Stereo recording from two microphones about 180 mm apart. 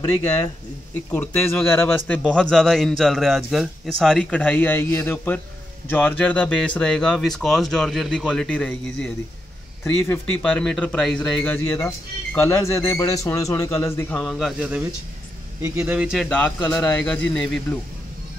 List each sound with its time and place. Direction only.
1.1 s a man's voice: 10° left (ahead or behind)